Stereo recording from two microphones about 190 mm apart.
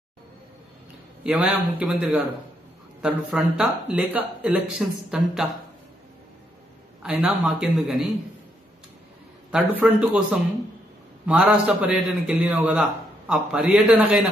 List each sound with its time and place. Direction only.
1.2 s speech: 5° right (ahead or behind)
7.0 s speech: 5° right (ahead or behind)
9.5 s speech: 5° right (ahead or behind)